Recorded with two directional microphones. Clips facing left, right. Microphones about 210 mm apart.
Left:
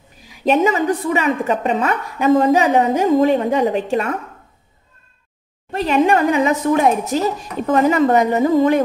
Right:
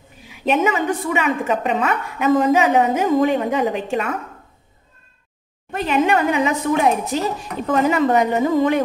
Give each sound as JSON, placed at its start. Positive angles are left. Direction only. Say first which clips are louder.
{"t": 0.2, "sound": "a woman's voice", "louder": "left 3 dB", "side_deg": 40}
{"t": 5.7, "sound": "a sound", "louder": "left 3 dB", "side_deg": 35}
{"t": 6.0, "sound": "a woman's voice", "louder": "left 3 dB", "side_deg": 40}